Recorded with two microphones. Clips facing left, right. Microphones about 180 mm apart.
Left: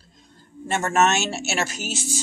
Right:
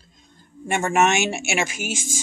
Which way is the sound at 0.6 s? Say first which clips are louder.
Right 1 dB; 10° right (ahead or behind).